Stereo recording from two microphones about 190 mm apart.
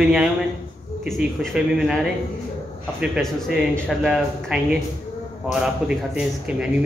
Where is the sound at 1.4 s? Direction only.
Centre (ahead or behind).